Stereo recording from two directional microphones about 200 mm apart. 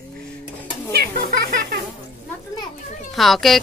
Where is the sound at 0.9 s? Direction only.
55° right (ahead or behind).